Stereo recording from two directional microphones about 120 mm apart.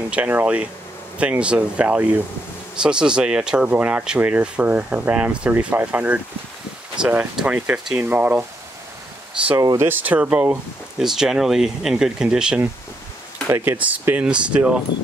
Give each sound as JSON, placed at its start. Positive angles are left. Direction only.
{"t": 0.1, "sound": "speech", "side_deg": -10}
{"t": 9.6, "sound": "speech", "side_deg": -30}
{"t": 9.8, "sound": "speech", "side_deg": -15}
{"t": 11.0, "sound": "speech", "side_deg": -5}